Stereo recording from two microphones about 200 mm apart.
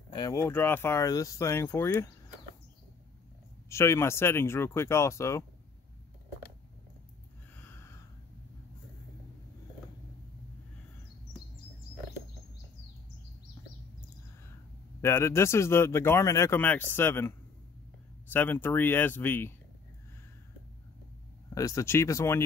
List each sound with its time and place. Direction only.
0.1 s a man's voice: 15° left (ahead or behind)
3.6 s a man's voice: 15° left (ahead or behind)
7.5 s a sound: 10° left (ahead or behind)
15.0 s a man's voice: 15° left (ahead or behind)
18.3 s a man's voice: 10° left (ahead or behind)
21.5 s a man's voice: 15° left (ahead or behind)